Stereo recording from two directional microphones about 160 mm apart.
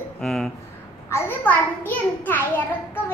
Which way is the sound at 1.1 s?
15° left (ahead or behind).